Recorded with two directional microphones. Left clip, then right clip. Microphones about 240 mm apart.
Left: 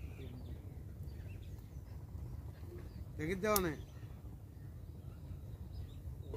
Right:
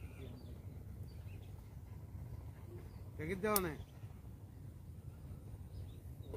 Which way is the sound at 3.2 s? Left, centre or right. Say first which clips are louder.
Left 2 dB; left.